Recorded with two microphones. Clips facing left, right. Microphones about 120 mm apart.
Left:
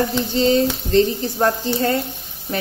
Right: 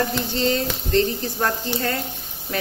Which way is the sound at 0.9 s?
30° left (ahead or behind).